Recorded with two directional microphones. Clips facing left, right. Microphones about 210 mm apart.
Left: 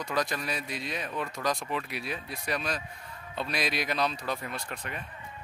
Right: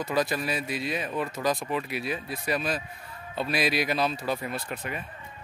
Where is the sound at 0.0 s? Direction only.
5° right (ahead or behind).